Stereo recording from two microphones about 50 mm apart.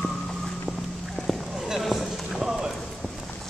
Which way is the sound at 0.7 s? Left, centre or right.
Centre.